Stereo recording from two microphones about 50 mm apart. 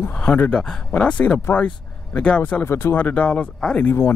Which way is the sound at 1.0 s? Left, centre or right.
Left.